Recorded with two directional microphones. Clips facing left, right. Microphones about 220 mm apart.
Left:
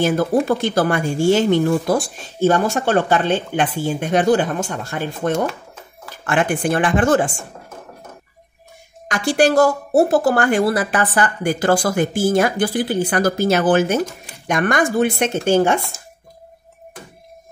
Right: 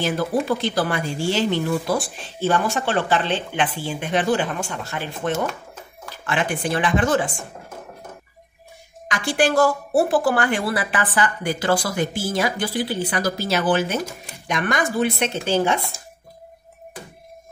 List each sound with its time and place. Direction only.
0.0 s speech: 45° left (ahead or behind)
9.0 s speech: 45° left (ahead or behind)